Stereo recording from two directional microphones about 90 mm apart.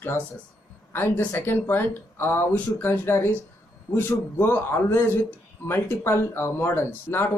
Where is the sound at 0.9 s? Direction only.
25° left (ahead or behind).